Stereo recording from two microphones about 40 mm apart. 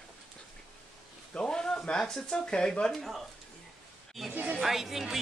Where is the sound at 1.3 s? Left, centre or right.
Centre.